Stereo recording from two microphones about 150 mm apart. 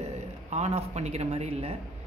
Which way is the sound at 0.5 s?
45° right (ahead or behind).